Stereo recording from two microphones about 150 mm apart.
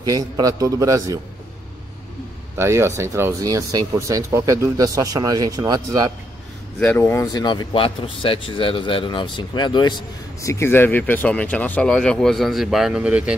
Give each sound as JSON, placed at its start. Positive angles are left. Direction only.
{"t": 0.0, "sound": "speech", "side_deg": -25}
{"t": 2.5, "sound": "speech", "side_deg": -15}
{"t": 7.0, "sound": "speech", "side_deg": 20}
{"t": 7.4, "sound": "speech", "side_deg": 35}
{"t": 10.4, "sound": "speech", "side_deg": 20}